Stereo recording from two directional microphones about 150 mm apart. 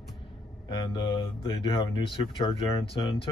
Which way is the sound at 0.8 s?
35° left (ahead or behind).